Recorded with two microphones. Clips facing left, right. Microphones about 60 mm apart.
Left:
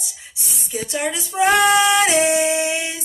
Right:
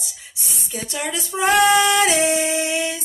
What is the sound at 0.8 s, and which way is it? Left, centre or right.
Speech, left.